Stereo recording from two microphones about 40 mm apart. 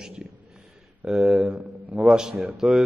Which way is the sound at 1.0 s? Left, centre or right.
Centre.